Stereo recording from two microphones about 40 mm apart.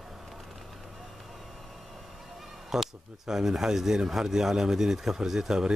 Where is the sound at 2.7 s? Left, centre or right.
Centre.